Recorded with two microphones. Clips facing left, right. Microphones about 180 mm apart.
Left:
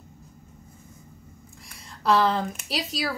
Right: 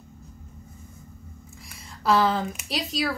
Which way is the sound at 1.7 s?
Centre (ahead or behind).